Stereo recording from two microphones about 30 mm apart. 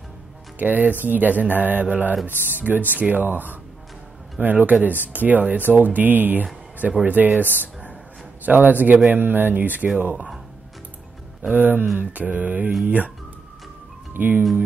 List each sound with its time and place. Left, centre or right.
0.6 s speech: right
2.2 s speech: right
7.1 s speech: right
9.1 s speech: right
11.5 s speech: right
12.0 s mantra: right
14.2 s speech: right